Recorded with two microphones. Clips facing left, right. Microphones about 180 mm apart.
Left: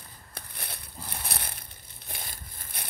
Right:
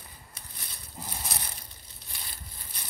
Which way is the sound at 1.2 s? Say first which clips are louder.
Left 1 dB; 60° left (ahead or behind).